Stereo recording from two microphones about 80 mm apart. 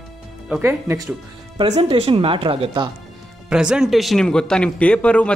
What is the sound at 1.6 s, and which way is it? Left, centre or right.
Speech, right.